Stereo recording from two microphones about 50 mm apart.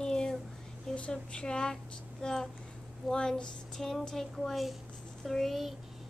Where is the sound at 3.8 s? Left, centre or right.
Centre.